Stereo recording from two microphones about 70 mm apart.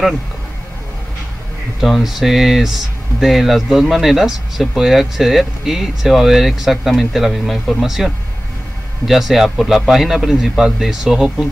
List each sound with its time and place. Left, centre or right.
1.8 s speech: centre